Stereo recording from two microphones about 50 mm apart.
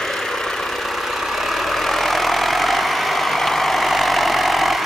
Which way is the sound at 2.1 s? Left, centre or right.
Centre.